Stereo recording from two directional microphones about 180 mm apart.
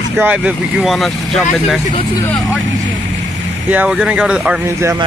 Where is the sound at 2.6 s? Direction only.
90° right.